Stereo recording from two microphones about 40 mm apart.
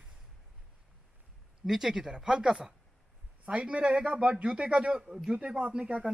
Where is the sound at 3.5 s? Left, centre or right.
Right.